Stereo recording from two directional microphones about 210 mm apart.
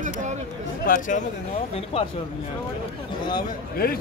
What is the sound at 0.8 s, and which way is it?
Speech, 40° left (ahead or behind).